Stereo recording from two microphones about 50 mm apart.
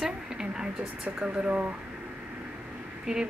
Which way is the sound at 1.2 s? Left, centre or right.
Right.